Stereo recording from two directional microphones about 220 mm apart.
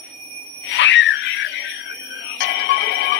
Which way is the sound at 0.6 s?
55° left (ahead or behind).